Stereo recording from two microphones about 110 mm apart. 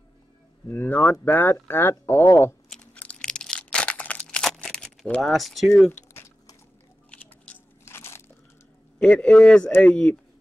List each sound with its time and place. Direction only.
0.7 s a man's voice: 15° left (ahead or behind)
2.7 s a sound: 10° left (ahead or behind)
4.3 s crumpling: 5° left (ahead or behind)
5.3 s speech: centre (ahead or behind)
7.8 s crunch: 25° left (ahead or behind)
9.0 s a man's voice: 10° left (ahead or behind)